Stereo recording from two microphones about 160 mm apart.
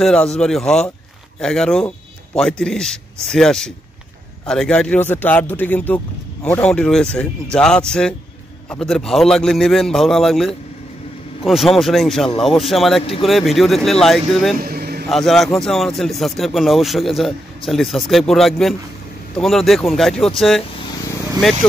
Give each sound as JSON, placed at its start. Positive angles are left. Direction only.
{"t": 0.0, "sound": "speech", "side_deg": 5}
{"t": 14.6, "sound": "a sound", "side_deg": -70}
{"t": 15.0, "sound": "speech", "side_deg": 0}